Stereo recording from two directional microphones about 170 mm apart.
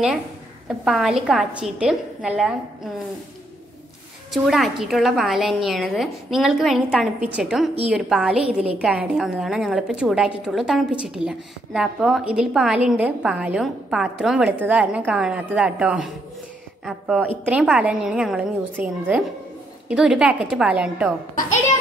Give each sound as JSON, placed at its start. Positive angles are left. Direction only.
{"t": 0.7, "sound": "a woman's voice", "side_deg": 0}
{"t": 4.3, "sound": "a woman's voice", "side_deg": 0}